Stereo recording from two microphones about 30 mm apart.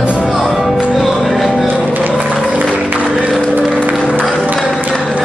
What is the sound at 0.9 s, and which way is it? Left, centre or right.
Music, centre.